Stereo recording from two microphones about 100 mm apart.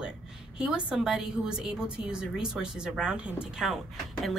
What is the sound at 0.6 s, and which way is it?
A woman's voice, 10° right (ahead or behind).